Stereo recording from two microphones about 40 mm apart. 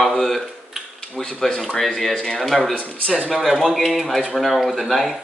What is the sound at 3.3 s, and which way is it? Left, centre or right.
Speech, centre.